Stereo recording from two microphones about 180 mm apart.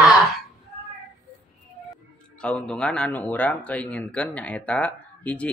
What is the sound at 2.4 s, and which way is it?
Speech, 5° left (ahead or behind).